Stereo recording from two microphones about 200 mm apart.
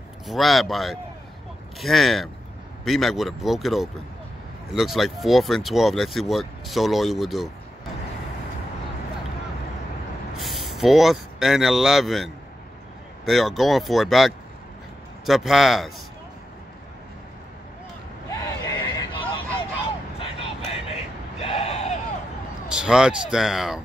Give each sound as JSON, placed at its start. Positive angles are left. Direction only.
{"t": 0.3, "sound": "speech", "side_deg": 0}
{"t": 10.3, "sound": "speech", "side_deg": 0}
{"t": 18.3, "sound": "hubbub", "side_deg": 20}
{"t": 20.9, "sound": "a sound", "side_deg": 30}
{"t": 22.8, "sound": "speech", "side_deg": -5}